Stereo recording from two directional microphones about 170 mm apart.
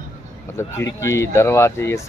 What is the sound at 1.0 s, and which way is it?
Speech, 15° left (ahead or behind).